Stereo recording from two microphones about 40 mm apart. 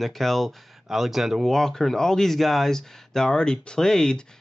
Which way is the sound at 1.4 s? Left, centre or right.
Centre.